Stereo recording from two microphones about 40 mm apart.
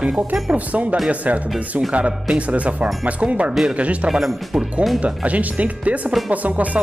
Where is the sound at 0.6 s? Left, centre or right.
Right.